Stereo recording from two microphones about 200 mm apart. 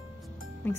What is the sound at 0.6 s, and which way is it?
Speech, 10° left (ahead or behind).